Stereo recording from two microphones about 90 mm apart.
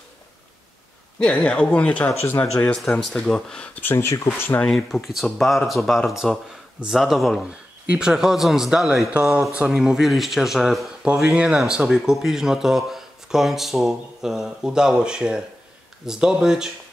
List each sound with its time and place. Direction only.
1.2 s speech: 10° left (ahead or behind)
2.2 s speech: 25° left (ahead or behind)
2.6 s speech: 5° left (ahead or behind); by 4.3 s 30° left (ahead or behind)
4.6 s speech: 5° left (ahead or behind)